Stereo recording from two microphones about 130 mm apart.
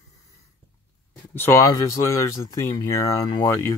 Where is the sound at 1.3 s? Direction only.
20° left (ahead or behind).